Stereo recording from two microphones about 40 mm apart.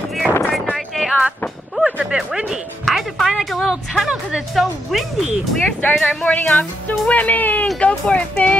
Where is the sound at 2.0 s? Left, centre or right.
Centre.